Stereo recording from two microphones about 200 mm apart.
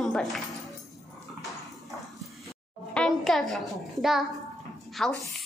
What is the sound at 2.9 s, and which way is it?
A child's voice, 5° left (ahead or behind).